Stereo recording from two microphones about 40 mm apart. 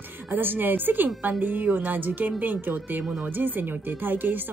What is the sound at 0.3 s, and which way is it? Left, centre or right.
Speech, right.